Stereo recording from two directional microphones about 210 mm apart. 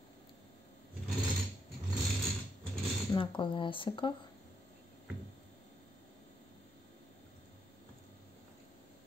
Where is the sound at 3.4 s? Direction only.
25° left (ahead or behind).